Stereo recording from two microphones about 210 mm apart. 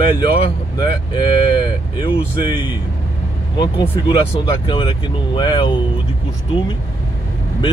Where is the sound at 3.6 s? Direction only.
25° left (ahead or behind).